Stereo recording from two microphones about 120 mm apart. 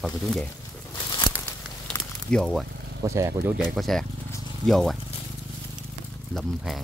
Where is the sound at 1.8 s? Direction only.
5° left (ahead or behind).